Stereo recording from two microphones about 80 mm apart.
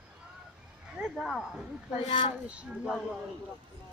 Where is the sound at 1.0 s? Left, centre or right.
Centre.